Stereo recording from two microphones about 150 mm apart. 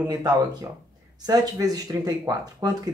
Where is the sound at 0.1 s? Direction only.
25° right (ahead or behind).